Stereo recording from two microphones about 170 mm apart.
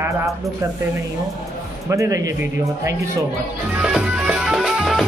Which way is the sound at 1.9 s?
20° right (ahead or behind).